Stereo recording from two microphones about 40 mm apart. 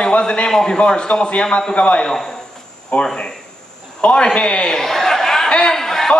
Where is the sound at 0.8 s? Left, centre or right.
Left.